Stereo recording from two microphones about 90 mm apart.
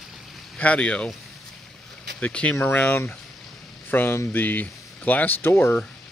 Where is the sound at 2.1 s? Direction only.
15° left (ahead or behind).